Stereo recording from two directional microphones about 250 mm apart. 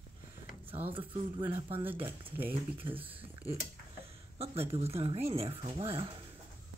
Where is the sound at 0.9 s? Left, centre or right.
Right.